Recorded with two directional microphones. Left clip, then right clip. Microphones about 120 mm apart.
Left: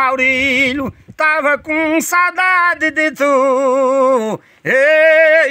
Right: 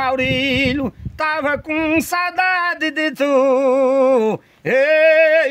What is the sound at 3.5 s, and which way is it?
Speech, 45° right (ahead or behind).